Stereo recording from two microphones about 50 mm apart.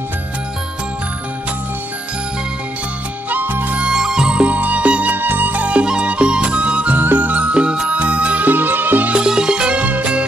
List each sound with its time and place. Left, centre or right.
3.3 s music: right
3.9 s music: centre; by 5.1 s right
5.1 s music: right
7.0 s music: right
9.1 s music: centre